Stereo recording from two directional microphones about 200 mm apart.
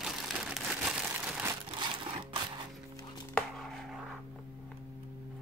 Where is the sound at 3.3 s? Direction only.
Centre (ahead or behind).